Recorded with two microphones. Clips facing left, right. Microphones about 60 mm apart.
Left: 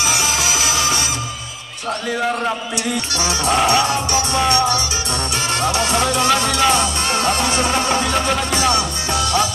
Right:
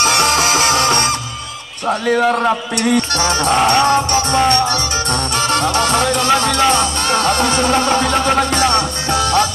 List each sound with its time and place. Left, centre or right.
0.0 s music: right
5.6 s music: right